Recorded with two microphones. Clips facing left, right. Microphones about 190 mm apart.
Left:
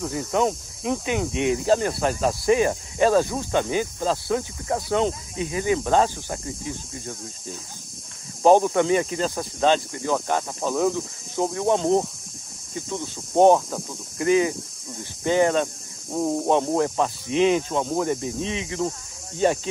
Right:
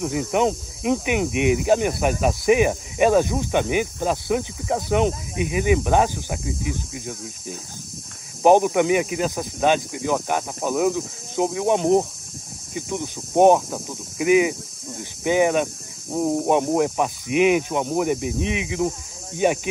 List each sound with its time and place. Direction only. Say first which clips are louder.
0.0 s speech: right 2 dB; 20° right (ahead or behind)